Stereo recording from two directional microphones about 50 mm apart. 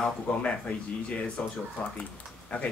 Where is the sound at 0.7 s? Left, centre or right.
Left.